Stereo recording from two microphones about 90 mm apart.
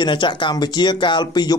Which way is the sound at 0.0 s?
60° left (ahead or behind).